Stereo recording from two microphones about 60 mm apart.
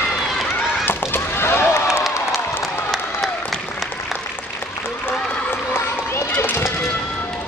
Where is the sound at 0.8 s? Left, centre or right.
Left.